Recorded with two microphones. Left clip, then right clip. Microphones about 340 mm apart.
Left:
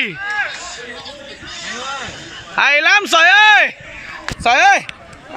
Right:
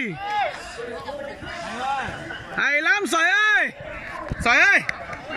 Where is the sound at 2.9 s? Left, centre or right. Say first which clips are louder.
Left 11 dB; centre.